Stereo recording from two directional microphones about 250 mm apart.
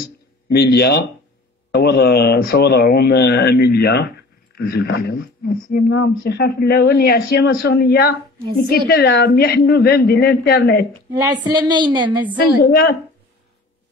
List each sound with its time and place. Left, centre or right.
0.6 s speech: left
11.1 s a woman's voice: centre
12.6 s speech: left